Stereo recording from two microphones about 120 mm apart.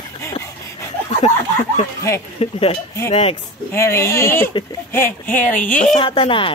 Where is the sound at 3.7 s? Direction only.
20° left (ahead or behind).